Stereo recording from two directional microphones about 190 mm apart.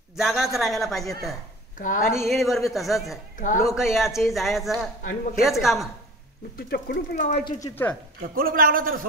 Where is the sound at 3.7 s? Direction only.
Centre (ahead or behind).